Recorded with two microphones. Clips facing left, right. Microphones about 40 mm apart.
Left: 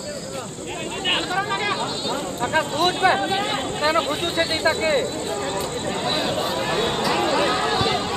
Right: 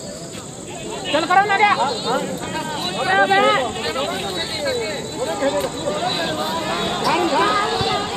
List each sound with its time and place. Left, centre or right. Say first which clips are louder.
1.2 s speech: right 9 dB; right
2.5 s speech: left 8 dB; left
3.3 s speech: right 8 dB; right
4.4 s speech: left 5 dB; left
5.2 s speech: right 5 dB; centre
5.9 s speech: left 1 dB; centre
6.6 s a sound: right 1 dB; centre